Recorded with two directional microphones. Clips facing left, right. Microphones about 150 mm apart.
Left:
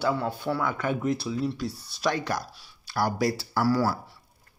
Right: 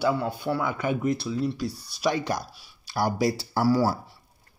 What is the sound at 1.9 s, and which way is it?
Speech, 15° right (ahead or behind).